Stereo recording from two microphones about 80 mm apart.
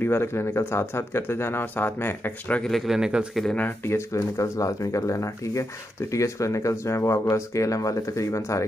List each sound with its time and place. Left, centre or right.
0.0 s speech: left
2.6 s a man's voice: centre
3.8 s speech: left